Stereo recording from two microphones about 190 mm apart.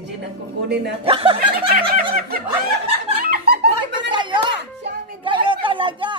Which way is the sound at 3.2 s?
50° right (ahead or behind).